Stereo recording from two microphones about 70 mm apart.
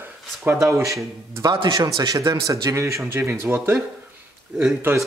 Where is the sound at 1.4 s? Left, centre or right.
Right.